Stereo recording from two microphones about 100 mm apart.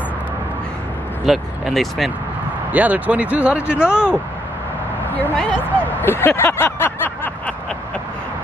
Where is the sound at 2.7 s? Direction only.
15° right (ahead or behind).